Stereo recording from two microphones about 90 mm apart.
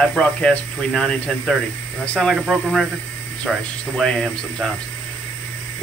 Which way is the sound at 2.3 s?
Centre (ahead or behind).